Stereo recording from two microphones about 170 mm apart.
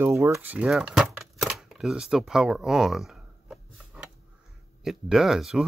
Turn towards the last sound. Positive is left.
turn(degrees=0)  # may be behind; listen again after turning